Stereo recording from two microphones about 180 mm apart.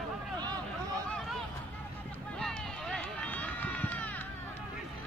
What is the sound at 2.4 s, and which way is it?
Run, 5° left (ahead or behind).